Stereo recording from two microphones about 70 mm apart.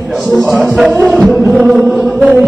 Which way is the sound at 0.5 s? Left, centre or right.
Centre.